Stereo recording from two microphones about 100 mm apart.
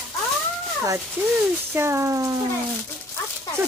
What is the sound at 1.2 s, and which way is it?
Speech, 20° right (ahead or behind).